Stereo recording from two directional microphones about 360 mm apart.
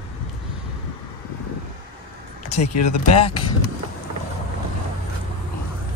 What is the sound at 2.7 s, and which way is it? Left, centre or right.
Speech, left.